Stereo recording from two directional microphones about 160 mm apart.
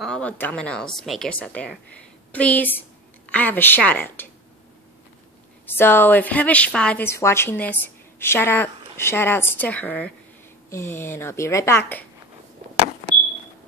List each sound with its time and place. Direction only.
0.0 s a woman's voice: 5° left (ahead or behind)
5.8 s a woman's voice: 15° left (ahead or behind)